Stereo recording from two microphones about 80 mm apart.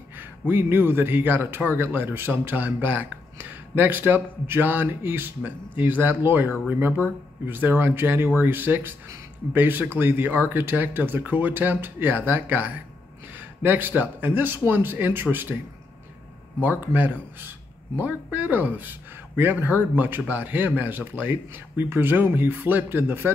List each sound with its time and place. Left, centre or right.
0.2 s a man's voice: right
15.5 s speech: centre
16.8 s a man's voice: right